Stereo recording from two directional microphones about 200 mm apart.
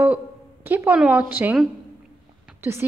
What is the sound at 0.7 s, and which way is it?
A woman's voice, 10° right (ahead or behind).